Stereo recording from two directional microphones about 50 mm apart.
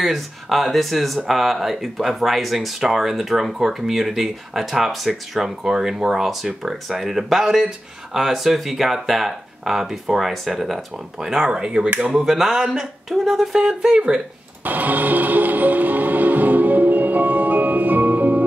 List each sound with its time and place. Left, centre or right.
0.0 s speech: centre
14.6 s music: right